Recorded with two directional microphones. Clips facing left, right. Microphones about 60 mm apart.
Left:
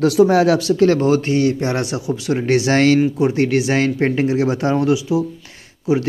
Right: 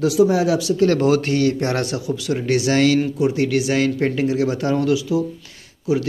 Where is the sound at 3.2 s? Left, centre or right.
Left.